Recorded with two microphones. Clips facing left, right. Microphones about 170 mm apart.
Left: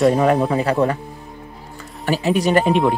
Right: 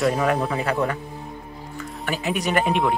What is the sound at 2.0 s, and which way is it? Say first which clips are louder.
Speech: left 7 dB; 35° left (ahead or behind).